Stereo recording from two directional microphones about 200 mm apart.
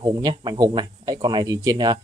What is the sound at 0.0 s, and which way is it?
Speech, 20° right (ahead or behind).